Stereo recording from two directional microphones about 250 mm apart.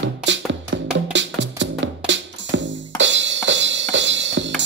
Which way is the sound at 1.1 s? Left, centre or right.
Right.